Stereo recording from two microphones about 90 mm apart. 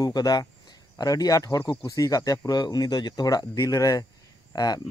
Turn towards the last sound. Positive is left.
turn(degrees=45)  # may be behind; listen again after turning